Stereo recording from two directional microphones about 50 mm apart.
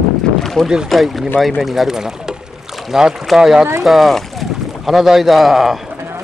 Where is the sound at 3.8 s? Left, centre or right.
Centre.